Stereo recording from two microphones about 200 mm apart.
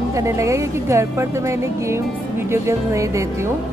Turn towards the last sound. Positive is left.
turn(degrees=-15)  # may be behind; listen again after turning